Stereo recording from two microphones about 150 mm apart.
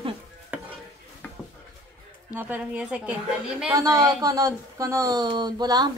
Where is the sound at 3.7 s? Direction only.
25° right (ahead or behind).